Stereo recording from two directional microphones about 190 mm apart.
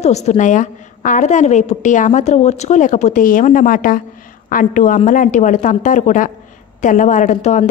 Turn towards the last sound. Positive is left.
turn(degrees=40)  # may be behind; listen again after turning